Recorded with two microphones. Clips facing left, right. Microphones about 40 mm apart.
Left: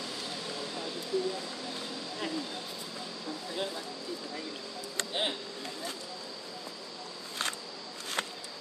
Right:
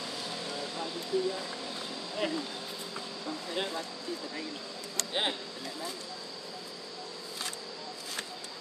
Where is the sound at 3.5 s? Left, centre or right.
Right.